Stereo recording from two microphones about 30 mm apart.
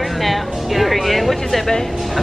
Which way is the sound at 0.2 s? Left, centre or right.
Centre.